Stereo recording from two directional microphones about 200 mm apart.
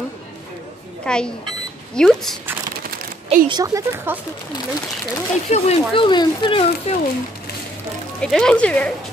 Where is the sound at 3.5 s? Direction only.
15° right (ahead or behind).